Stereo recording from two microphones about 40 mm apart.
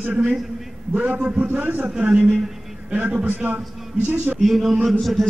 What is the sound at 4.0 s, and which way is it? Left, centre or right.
Speech, right.